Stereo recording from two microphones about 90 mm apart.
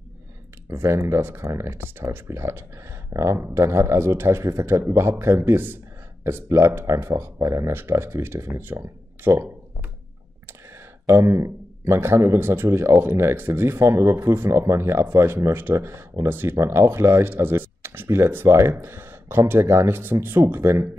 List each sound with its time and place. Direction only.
0.7 s speech: 30° right (ahead or behind)
11.1 s speech: 30° right (ahead or behind)